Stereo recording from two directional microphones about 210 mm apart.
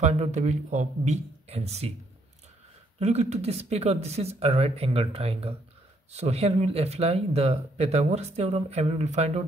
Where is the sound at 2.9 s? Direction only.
30° right (ahead or behind).